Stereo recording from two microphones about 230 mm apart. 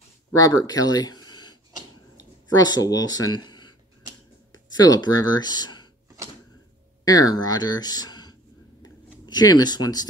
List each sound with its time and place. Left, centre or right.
0.4 s speech: centre
7.1 s speech: centre